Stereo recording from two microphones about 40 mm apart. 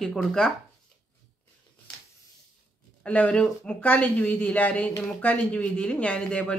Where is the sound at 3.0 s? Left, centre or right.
Left.